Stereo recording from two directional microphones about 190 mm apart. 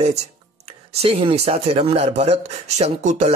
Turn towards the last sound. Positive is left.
turn(degrees=-40)  # may be behind; listen again after turning